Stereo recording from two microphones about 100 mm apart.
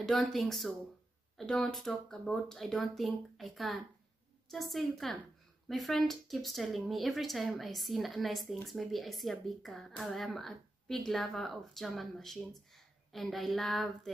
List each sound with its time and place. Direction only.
0.0 s speech: 5° left (ahead or behind)